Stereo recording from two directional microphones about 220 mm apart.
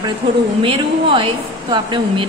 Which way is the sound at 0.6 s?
25° right (ahead or behind).